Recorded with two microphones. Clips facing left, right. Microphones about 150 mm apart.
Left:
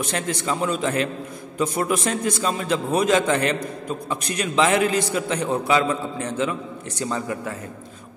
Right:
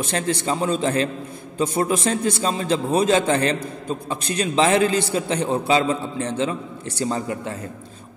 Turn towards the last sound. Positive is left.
turn(degrees=-25)  # may be behind; listen again after turning